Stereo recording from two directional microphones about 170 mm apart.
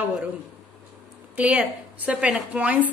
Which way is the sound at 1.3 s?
5° right (ahead or behind).